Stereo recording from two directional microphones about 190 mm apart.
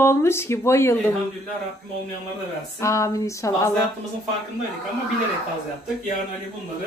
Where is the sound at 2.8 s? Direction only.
15° left (ahead or behind).